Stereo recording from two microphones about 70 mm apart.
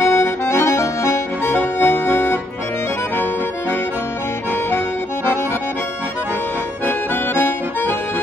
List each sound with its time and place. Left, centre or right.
0.0 s accordion: left
4.6 s accordion: left
6.9 s accordion: left